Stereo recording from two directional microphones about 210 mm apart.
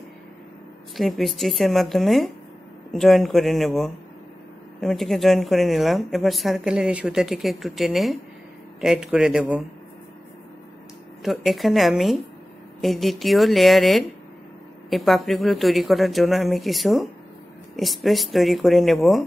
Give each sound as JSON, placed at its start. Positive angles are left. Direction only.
{"t": 0.9, "sound": "a woman's voice", "side_deg": 0}
{"t": 11.2, "sound": "a woman's voice", "side_deg": 0}